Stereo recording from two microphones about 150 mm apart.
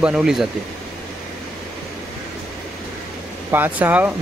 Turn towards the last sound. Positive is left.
turn(degrees=-10)  # may be behind; listen again after turning